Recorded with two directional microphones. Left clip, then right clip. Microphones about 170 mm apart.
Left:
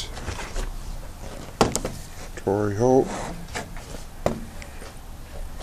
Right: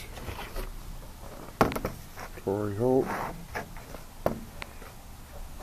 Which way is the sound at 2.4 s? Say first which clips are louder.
Left 7 dB; 10° left (ahead or behind).